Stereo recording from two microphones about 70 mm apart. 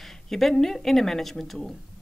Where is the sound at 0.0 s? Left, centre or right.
Centre.